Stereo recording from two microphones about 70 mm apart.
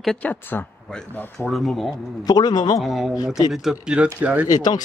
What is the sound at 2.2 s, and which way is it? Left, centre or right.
Speech, left.